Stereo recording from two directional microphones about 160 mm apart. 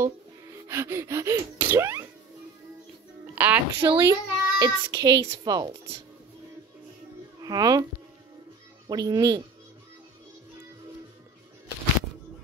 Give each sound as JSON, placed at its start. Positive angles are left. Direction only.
{"t": 0.7, "sound": "gasp", "side_deg": -15}
{"t": 3.3, "sound": "a woman's voice", "side_deg": -10}
{"t": 4.0, "sound": "a child's voice", "side_deg": -25}
{"t": 7.4, "sound": "a child's voice", "side_deg": -25}
{"t": 8.8, "sound": "a child's voice", "side_deg": -25}